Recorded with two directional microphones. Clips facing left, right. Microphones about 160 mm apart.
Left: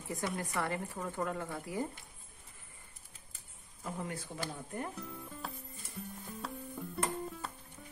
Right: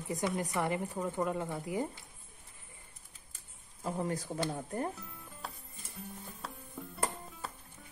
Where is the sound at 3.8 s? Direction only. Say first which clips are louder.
Right 6 dB; 35° right (ahead or behind).